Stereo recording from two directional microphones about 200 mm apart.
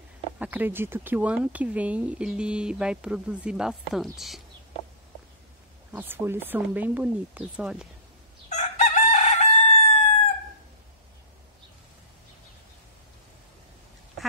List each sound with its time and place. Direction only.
0.4 s speech: 10° right (ahead or behind)
5.9 s speech: 10° right (ahead or behind)
8.5 s chicken: 35° left (ahead or behind)